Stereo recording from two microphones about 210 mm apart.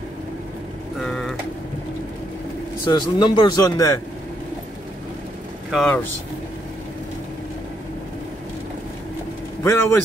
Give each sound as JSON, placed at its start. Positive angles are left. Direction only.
{"t": 1.0, "sound": "vehicle", "side_deg": 0}
{"t": 2.8, "sound": "speech", "side_deg": 20}
{"t": 5.7, "sound": "speech", "side_deg": 5}
{"t": 9.6, "sound": "a man's voice", "side_deg": 15}